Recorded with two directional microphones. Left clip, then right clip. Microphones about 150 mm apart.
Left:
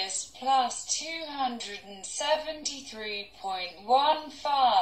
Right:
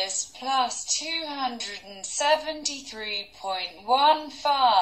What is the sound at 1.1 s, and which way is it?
A woman's voice, 30° right (ahead or behind).